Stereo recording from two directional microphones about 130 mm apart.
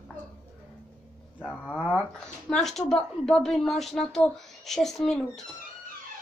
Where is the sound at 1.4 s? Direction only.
5° left (ahead or behind).